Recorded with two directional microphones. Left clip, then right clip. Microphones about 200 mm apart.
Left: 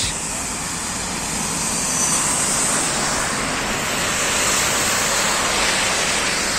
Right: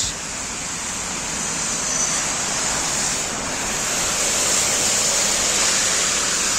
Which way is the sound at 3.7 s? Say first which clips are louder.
Left 2 dB; 50° right (ahead or behind).